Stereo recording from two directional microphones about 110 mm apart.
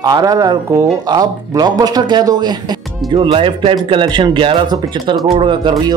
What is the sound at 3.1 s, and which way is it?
Speech, 55° right (ahead or behind).